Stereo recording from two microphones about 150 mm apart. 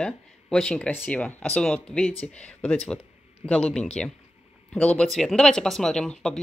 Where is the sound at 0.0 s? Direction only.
5° left (ahead or behind).